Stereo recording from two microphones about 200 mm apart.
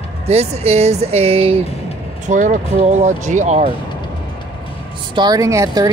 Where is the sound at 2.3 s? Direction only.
40° right (ahead or behind).